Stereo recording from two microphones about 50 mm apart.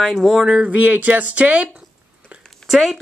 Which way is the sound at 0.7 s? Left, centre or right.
Right.